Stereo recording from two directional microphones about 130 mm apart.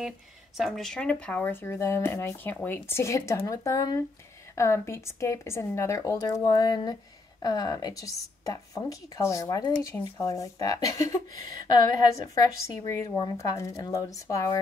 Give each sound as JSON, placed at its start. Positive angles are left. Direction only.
{"t": 0.6, "sound": "speech", "side_deg": 0}